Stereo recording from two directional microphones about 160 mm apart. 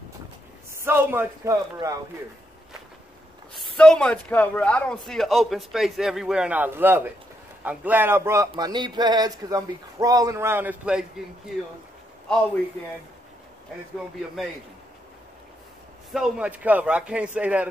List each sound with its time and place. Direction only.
0.7 s speech: 15° right (ahead or behind)
3.5 s a man's voice: 5° left (ahead or behind)
16.1 s speech: 5° right (ahead or behind)